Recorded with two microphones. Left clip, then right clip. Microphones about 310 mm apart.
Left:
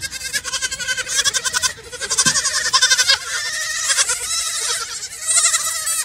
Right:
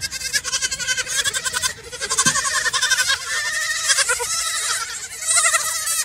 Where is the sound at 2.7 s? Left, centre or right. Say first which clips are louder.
Left 6 dB; left.